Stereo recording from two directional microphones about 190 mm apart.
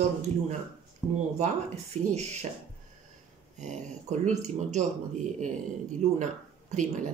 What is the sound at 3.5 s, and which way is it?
Speech, 40° right (ahead or behind).